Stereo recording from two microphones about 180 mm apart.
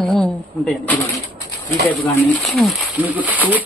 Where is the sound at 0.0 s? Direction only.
Centre (ahead or behind).